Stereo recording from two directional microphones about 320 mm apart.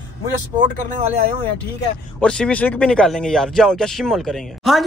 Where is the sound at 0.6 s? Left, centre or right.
Right.